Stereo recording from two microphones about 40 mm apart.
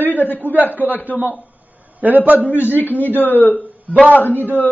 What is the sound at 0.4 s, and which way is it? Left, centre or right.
A man's voice, right.